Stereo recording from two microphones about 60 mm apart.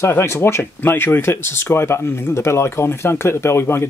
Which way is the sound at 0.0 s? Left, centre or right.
Left.